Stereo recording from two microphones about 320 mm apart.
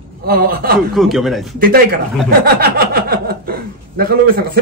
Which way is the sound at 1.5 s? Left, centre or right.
Right.